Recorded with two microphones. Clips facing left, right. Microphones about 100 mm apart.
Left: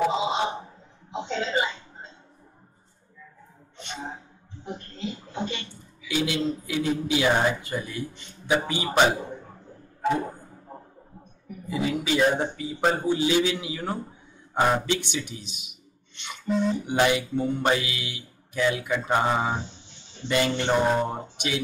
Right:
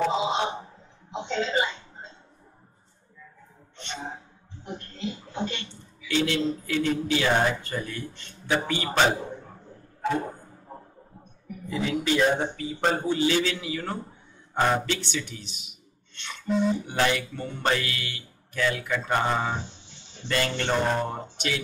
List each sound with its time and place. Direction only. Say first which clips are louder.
0.0 s a sound: left 1 dB; 5° left (ahead or behind)
3.7 s sneeze: right 1 dB; 10° left (ahead or behind)
4.6 s a sound: even; 5° left (ahead or behind)
6.0 s a man's voice: right 1 dB; 10° left (ahead or behind)
11.6 s a man's voice: even; 5° left (ahead or behind)
16.4 s speech: even; centre (ahead or behind)
16.8 s a man's voice: left 3 dB; 15° left (ahead or behind)